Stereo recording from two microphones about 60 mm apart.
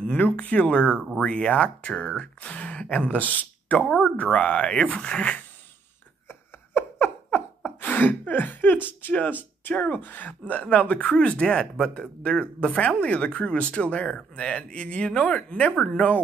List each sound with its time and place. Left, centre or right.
0.0 s speech: left
6.2 s a sound: left
7.6 s speech: left